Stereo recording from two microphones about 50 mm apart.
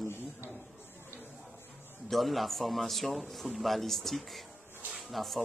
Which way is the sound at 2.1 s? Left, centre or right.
Centre.